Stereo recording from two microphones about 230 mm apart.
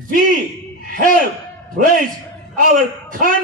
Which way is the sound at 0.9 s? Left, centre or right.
Right.